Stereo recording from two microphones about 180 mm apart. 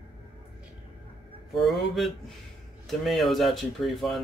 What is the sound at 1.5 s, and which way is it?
Speech, centre (ahead or behind).